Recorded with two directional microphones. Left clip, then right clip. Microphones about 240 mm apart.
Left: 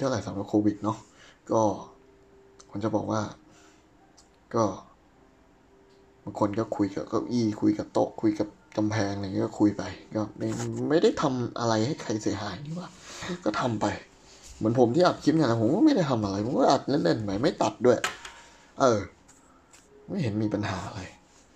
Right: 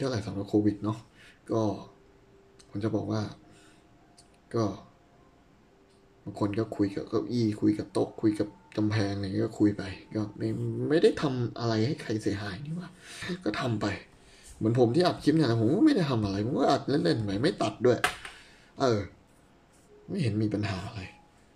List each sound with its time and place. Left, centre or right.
0.0 s speech: centre
4.5 s speech: centre
6.3 s speech: centre
20.1 s speech: centre